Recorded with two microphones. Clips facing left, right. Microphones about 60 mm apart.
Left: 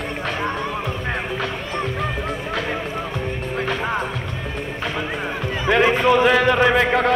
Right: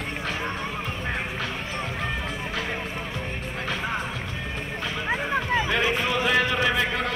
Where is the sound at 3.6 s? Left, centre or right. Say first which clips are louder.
Left 5 dB; left.